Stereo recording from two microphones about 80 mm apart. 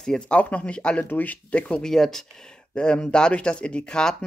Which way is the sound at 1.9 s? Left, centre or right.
Centre.